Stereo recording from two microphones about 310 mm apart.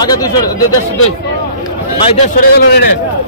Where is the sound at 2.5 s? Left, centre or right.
Left.